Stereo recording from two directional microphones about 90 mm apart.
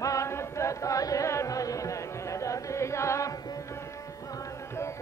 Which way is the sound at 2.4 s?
35° left (ahead or behind).